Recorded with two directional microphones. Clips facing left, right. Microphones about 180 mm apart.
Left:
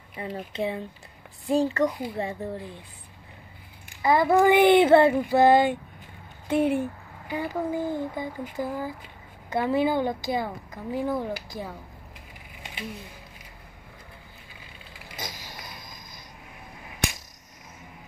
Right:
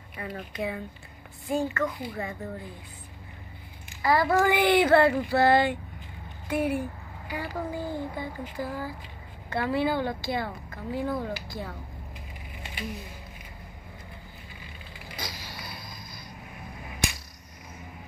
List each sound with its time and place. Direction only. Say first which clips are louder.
0.1 s speech: left 3 dB; 25° left (ahead or behind)
4.0 s a woman's voice: left 3 dB; 20° left (ahead or behind)
15.1 s a sound: left 1 dB; 45° left (ahead or behind)